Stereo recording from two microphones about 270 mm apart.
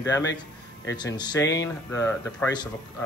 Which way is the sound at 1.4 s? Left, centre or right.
Left.